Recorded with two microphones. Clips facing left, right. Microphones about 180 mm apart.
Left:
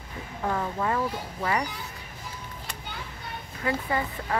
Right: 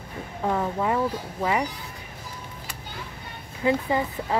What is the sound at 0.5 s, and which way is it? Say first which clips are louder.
Speech: right 3 dB; 15° right (ahead or behind).